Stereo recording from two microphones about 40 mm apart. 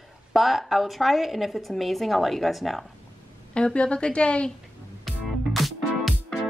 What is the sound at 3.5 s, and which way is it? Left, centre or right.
Speech, left.